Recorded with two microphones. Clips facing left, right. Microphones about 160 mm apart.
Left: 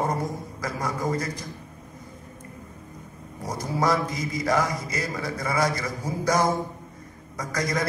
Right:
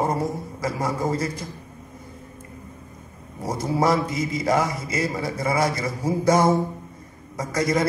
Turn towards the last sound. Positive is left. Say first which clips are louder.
# right 5 dB
turn(degrees=-25)  # may be behind; listen again after turning